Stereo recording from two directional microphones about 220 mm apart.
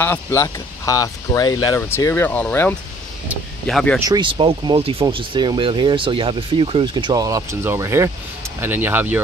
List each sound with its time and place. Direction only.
0.0 s speech: 10° left (ahead or behind)
4.1 s speech: 20° right (ahead or behind)